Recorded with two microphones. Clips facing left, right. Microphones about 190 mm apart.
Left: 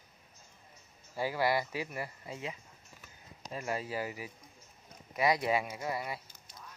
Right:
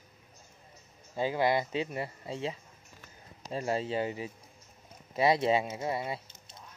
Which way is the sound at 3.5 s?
30° right (ahead or behind).